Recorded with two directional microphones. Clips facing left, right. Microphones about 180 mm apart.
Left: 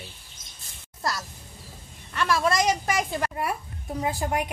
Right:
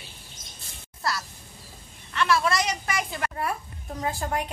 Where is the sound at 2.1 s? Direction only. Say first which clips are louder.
Even; 40° left (ahead or behind).